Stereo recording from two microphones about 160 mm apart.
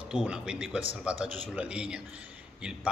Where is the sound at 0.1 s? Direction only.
5° right (ahead or behind).